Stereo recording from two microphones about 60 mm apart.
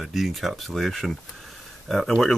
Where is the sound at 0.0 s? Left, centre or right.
Centre.